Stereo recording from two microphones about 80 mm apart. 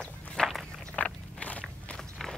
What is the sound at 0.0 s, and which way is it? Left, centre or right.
Walk, centre.